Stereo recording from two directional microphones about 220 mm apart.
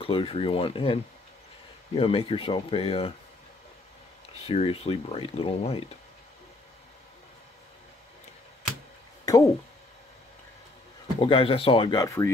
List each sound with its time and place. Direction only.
0.0 s speech: 25° left (ahead or behind)
2.0 s speech: 25° left (ahead or behind)
4.5 s speech: 25° left (ahead or behind)
9.2 s a sound: 15° left (ahead or behind)
11.1 s speech: 25° left (ahead or behind)